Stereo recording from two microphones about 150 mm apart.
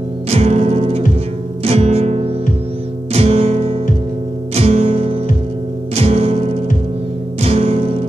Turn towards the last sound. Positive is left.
turn(degrees=-40)  # may be behind; listen again after turning